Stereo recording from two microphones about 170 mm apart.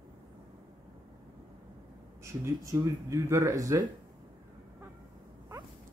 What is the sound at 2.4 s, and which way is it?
Speech, 15° right (ahead or behind).